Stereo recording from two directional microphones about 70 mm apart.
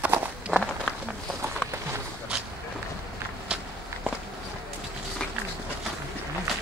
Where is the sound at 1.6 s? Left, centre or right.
Centre.